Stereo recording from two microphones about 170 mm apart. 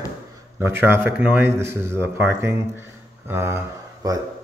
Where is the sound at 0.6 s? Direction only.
15° right (ahead or behind).